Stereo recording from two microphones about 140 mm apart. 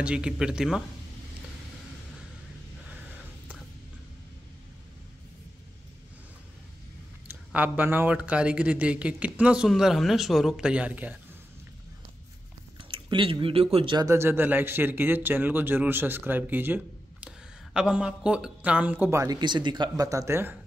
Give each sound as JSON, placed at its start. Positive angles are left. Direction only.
{"t": 0.0, "sound": "speech", "side_deg": -5}
{"t": 7.5, "sound": "speech", "side_deg": -10}
{"t": 12.9, "sound": "speech", "side_deg": -40}
{"t": 13.9, "sound": "speech", "side_deg": -20}